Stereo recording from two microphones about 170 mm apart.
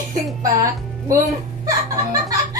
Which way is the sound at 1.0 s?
20° right (ahead or behind).